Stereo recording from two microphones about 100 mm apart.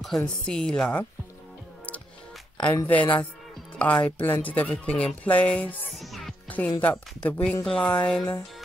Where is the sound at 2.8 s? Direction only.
15° left (ahead or behind).